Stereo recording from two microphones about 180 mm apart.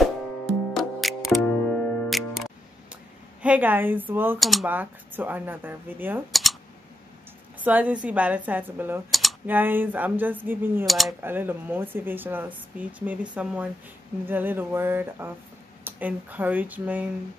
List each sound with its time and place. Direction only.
0.0 s music: centre (ahead or behind)
3.4 s speech: 10° right (ahead or behind)
4.4 s speech: centre (ahead or behind)
7.6 s speech: 10° right (ahead or behind)
10.9 s speech: centre (ahead or behind)
11.2 s speech: 10° right (ahead or behind)